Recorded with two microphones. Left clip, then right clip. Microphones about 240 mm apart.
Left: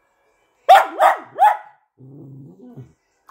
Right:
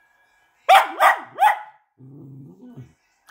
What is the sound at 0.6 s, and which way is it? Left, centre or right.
Dog, centre.